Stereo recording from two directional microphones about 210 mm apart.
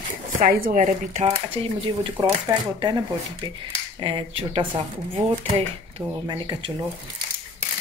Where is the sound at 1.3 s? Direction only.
25° right (ahead or behind).